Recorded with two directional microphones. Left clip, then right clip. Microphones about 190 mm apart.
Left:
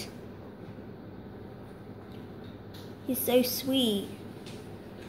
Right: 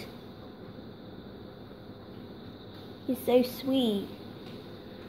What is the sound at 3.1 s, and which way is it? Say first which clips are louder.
Speech: right 1 dB; 15° right (ahead or behind).